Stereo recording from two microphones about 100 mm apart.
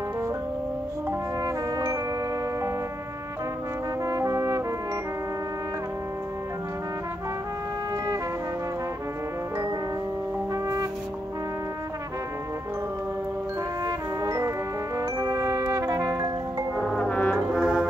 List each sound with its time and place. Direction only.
1.4 s brass instrument: 30° right (ahead or behind)
4.0 s brass instrument: 35° right (ahead or behind)
10.5 s music: 35° right (ahead or behind)
13.8 s music: 30° right (ahead or behind)
15.0 s brass instrument: 35° right (ahead or behind)
16.8 s brass instrument: 5° left (ahead or behind)
17.1 s brass instrument: 15° left (ahead or behind)
17.5 s brass instrument: centre (ahead or behind)